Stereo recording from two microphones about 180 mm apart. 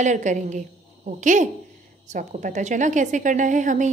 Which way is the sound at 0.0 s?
40° right (ahead or behind).